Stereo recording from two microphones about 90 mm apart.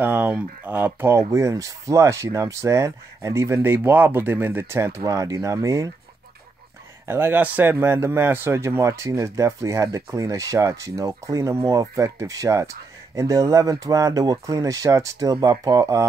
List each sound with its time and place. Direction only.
0.0 s a man's voice: 20° right (ahead or behind)
7.1 s a man's voice: 25° right (ahead or behind)